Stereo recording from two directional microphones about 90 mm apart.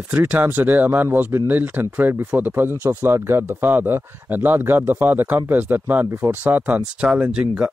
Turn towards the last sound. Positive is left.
turn(degrees=-10)  # may be behind; listen again after turning